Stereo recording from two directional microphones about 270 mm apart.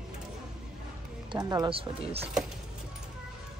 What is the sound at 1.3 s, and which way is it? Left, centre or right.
Speech, centre.